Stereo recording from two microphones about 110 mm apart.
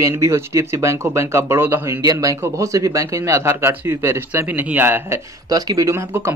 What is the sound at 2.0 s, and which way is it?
Speech, 30° right (ahead or behind).